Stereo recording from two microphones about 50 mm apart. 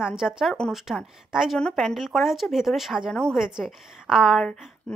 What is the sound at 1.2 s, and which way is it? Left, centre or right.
Speech, centre.